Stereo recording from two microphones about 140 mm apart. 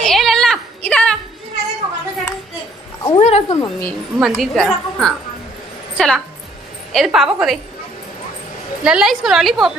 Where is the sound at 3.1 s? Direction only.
50° left (ahead or behind).